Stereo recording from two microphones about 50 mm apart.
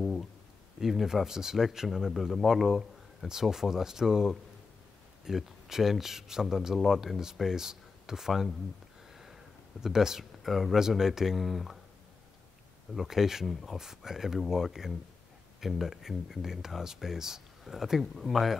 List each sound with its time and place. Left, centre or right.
0.0 s a sound: centre
0.7 s speech: centre
12.9 s speech: centre